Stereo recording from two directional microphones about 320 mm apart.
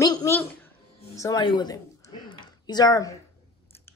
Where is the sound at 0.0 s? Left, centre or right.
Centre.